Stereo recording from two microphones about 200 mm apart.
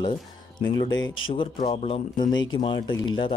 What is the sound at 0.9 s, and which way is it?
Speech, 70° left (ahead or behind).